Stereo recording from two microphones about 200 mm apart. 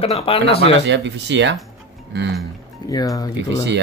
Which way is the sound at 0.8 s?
60° right (ahead or behind).